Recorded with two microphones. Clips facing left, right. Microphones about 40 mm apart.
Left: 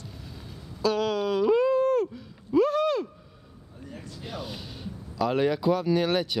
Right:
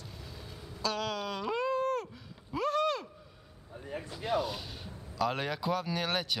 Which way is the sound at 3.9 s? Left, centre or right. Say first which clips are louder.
Right 3 dB; right.